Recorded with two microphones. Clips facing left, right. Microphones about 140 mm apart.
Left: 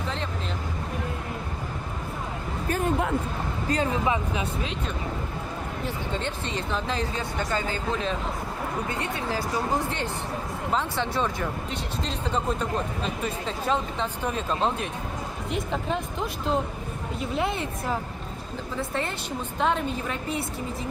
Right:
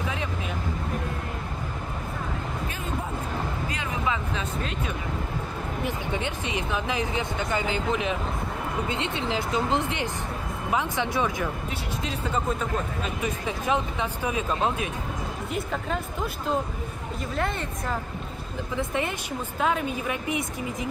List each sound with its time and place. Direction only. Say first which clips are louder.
3.6 s a sound: left 7 dB; 40° left (ahead or behind)
5.9 s speech: even; 15° right (ahead or behind); by 17.9 s 5° left (ahead or behind)
18.8 s speech: right 2 dB; 15° right (ahead or behind)